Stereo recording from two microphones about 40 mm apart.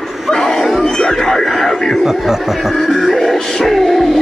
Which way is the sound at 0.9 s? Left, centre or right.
Centre.